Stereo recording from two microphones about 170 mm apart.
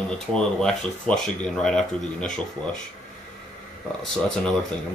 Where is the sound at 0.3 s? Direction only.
5° left (ahead or behind).